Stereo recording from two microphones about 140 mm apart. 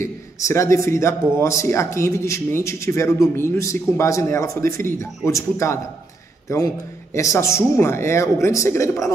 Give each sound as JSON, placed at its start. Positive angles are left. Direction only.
{"t": 0.0, "sound": "a man's voice", "side_deg": 20}
{"t": 7.2, "sound": "a man's voice", "side_deg": 20}